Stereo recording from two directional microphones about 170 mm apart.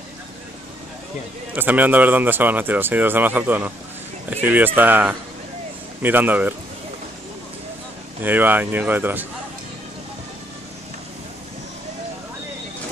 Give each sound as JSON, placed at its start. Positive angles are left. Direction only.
{"t": 1.5, "sound": "speech", "side_deg": -10}
{"t": 8.2, "sound": "speech", "side_deg": -10}